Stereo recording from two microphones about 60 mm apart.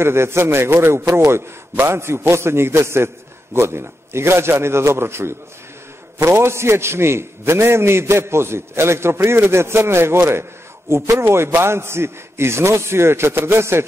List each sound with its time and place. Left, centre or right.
0.0 s a man's voice: right